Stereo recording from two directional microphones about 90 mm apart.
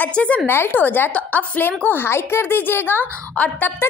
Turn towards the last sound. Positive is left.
turn(degrees=15)  # may be behind; listen again after turning